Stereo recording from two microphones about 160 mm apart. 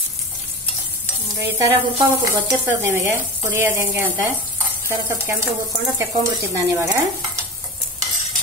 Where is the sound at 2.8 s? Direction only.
15° right (ahead or behind).